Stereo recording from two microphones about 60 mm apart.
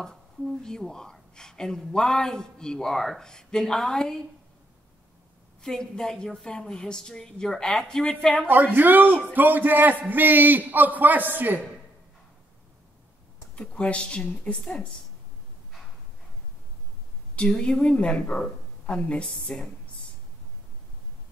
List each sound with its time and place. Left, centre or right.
0.0 s a woman's voice: centre
5.6 s a woman's voice: centre
8.5 s a man's voice: right
13.6 s a woman's voice: centre
17.4 s a woman's voice: centre